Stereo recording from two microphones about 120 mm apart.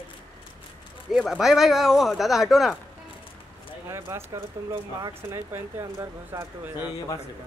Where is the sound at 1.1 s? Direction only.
Centre (ahead or behind).